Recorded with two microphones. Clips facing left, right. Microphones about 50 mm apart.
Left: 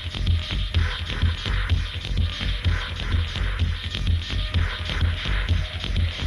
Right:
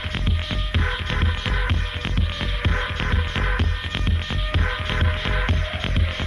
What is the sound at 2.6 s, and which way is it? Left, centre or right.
Music, right.